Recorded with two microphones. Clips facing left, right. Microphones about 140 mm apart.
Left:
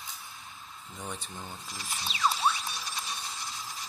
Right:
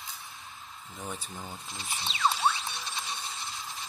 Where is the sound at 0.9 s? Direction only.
Centre (ahead or behind).